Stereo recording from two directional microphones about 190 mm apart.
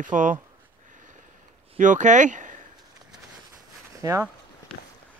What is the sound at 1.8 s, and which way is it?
Speech, 40° right (ahead or behind).